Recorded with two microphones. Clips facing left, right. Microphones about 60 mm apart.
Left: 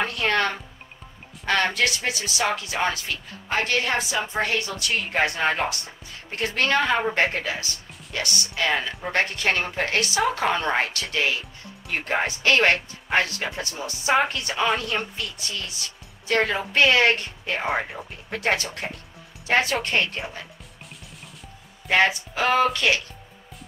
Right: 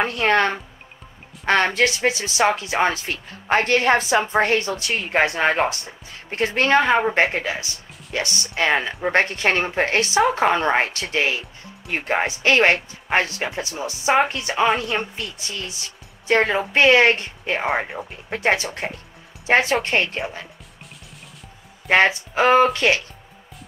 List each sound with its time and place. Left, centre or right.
0.0 s a woman's voice: right
17.6 s speech: centre
18.8 s speech: right
21.9 s speech: right